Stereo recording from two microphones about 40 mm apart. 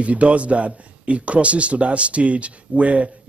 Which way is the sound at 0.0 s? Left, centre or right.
Right.